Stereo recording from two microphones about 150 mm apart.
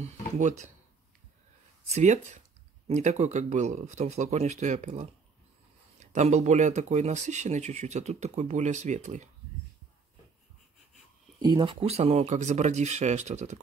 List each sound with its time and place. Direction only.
0.0 s speech: 50° right (ahead or behind)
1.9 s speech: 50° right (ahead or behind)
11.4 s speech: 35° right (ahead or behind); by 13.6 s 50° right (ahead or behind)